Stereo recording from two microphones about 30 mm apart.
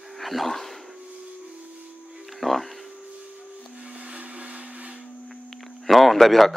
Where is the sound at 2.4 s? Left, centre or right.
Centre.